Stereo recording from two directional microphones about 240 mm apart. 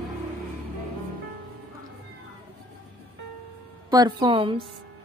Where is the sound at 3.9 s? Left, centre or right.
Centre.